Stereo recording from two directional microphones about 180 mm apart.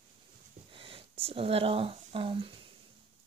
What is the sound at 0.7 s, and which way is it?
Speech, 30° right (ahead or behind).